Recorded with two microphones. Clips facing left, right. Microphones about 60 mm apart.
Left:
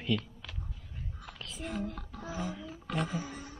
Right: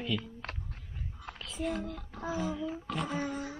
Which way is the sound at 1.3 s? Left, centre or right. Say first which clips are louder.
Right 5 dB; right.